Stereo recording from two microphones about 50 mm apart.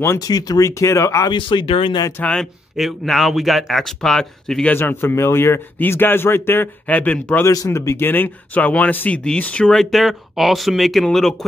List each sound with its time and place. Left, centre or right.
0.0 s speech: left
2.2 s speech: left
2.8 s speech: centre
4.7 s speech: left
5.1 s speech: left
5.8 s speech: left
6.9 s speech: left
7.4 s speech: left
8.1 s speech: left
9.7 s speech: centre